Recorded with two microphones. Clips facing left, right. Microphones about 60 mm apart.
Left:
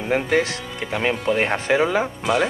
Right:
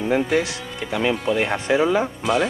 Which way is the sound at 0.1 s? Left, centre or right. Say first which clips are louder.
Left 1 dB; left.